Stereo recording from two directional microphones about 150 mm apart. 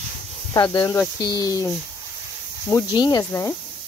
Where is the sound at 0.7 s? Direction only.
20° left (ahead or behind).